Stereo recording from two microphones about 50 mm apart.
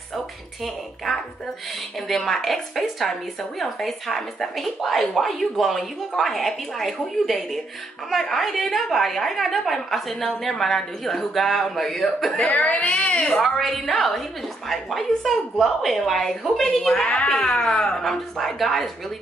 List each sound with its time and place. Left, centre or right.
2.0 s speech: centre
12.4 s speech: left
13.1 s speech: centre